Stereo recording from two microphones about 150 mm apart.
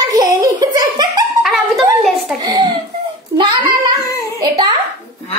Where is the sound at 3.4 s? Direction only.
30° right (ahead or behind).